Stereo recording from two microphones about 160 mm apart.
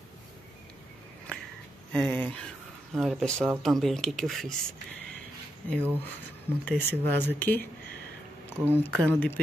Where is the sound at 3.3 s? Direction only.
15° right (ahead or behind).